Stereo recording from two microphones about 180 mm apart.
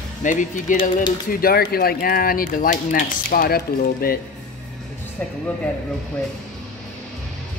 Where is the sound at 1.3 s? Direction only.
55° left (ahead or behind).